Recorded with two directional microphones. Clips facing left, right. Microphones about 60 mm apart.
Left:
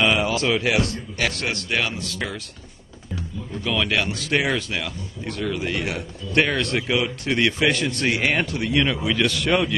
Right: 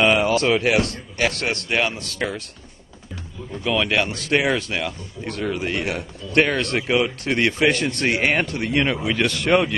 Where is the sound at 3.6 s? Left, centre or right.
Right.